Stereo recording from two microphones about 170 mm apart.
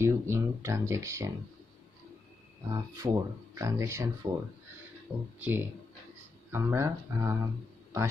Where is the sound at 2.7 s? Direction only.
20° right (ahead or behind).